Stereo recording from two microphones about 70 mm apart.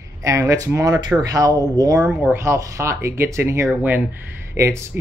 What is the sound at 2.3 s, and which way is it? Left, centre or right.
Speech, right.